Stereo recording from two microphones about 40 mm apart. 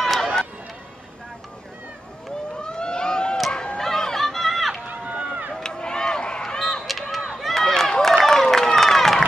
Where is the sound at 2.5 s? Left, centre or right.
Left.